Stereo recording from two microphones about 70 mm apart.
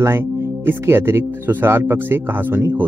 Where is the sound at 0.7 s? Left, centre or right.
Right.